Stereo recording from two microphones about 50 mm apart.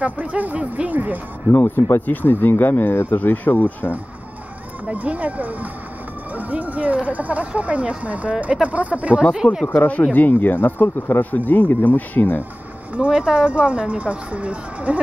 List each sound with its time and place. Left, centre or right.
0.0 s speech: right
1.5 s speech: left
4.8 s speech: right
9.2 s speech: centre
10.1 s speech: left
11.3 s speech: left
12.9 s speech: right